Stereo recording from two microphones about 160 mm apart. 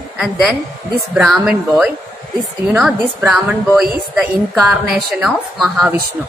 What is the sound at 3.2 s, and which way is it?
A woman's voice, centre (ahead or behind).